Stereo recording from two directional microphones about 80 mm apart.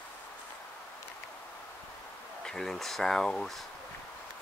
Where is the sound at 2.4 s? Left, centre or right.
Centre.